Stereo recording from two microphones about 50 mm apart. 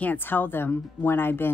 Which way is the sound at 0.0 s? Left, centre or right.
Left.